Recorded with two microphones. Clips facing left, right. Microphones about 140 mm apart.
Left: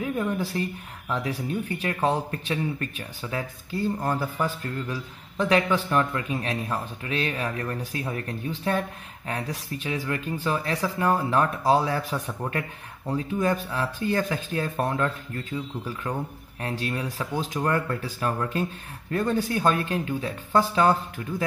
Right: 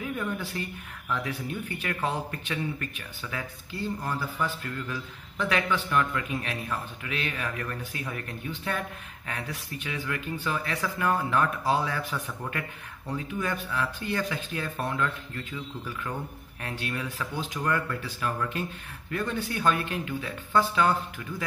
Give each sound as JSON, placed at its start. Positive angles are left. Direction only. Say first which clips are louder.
{"t": 0.0, "sound": "speech", "louder": "left 5 dB", "side_deg": 35}